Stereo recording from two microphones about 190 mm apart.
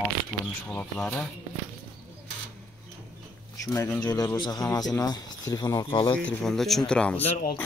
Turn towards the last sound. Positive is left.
turn(degrees=5)  # may be behind; listen again after turning